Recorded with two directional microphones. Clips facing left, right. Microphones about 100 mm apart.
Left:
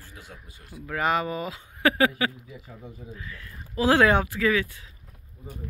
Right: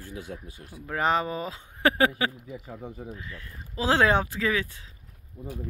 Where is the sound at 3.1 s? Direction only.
25° right (ahead or behind).